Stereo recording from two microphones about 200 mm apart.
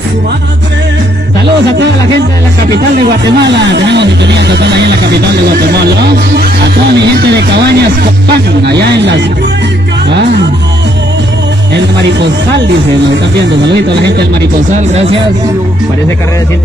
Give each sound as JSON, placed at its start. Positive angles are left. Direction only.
{"t": 3.3, "sound": "speech", "side_deg": -60}
{"t": 13.8, "sound": "speech", "side_deg": -60}
{"t": 14.9, "sound": "speech", "side_deg": -30}